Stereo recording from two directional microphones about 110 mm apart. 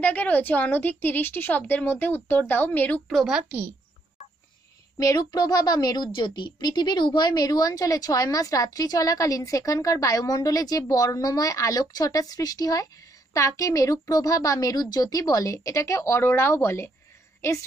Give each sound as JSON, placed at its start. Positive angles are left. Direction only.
{"t": 0.0, "sound": "a woman's voice", "side_deg": 15}
{"t": 3.3, "sound": "a woman's voice", "side_deg": -5}
{"t": 4.9, "sound": "a woman's voice", "side_deg": 35}